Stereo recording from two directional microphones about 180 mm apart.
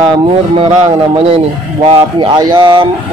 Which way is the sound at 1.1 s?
30° right (ahead or behind).